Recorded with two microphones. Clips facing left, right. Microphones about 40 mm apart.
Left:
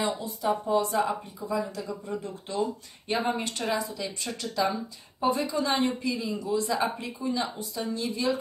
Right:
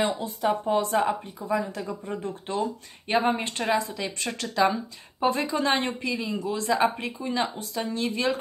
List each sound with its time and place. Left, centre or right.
0.0 s a woman's voice: right
3.9 s a woman's voice: right